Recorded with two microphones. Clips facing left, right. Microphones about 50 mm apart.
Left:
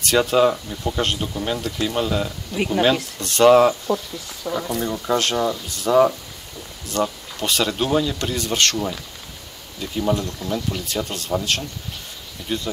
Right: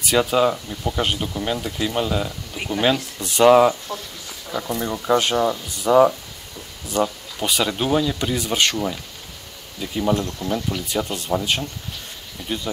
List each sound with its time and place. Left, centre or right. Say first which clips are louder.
0.0 s speech: left 1 dB; centre
12.4 s speech: left 1 dB; right